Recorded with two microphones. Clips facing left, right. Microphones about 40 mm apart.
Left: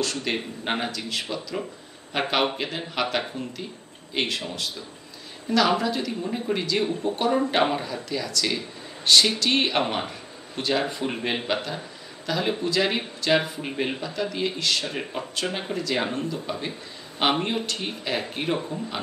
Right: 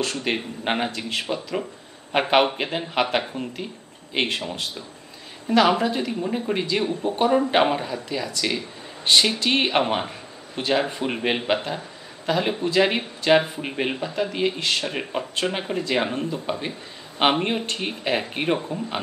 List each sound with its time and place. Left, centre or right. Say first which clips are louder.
0.0 s speech: right 2 dB; right
0.9 s speech: right 3 dB; right; by 11.4 s centre
11.4 s speech: right 3 dB; right